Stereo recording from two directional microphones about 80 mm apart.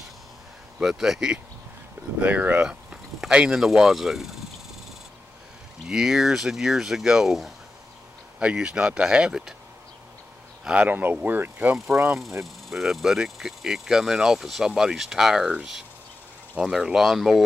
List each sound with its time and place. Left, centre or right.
0.7 s speech: centre
2.1 s speech: centre
5.9 s speech: centre
10.6 s speech: centre
12.4 s speech: centre